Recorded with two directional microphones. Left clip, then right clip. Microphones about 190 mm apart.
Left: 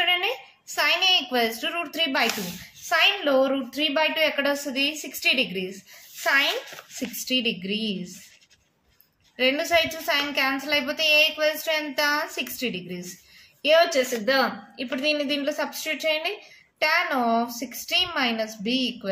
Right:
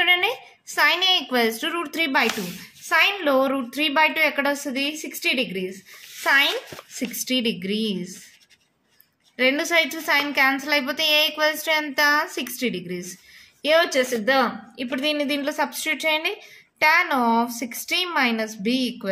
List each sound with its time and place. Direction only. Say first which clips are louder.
0.0 s a sound: right 4 dB; 35° right (ahead or behind)
2.9 s a woman's voice: right 1 dB; 35° right (ahead or behind)
9.4 s a woman's voice: right 2 dB; 35° right (ahead or behind)